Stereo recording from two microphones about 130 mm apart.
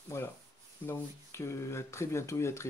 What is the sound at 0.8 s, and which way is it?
Speech, 20° left (ahead or behind).